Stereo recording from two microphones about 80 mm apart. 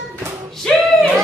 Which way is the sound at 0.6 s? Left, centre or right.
Centre.